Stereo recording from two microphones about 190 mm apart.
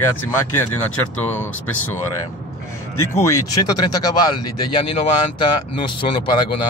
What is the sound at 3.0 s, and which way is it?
Speech, 15° left (ahead or behind).